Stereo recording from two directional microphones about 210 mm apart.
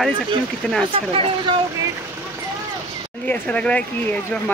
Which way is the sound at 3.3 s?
5° left (ahead or behind).